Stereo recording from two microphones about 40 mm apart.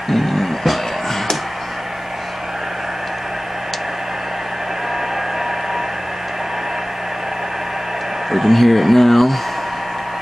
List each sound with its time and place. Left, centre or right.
0.1 s music: centre
8.3 s speech: centre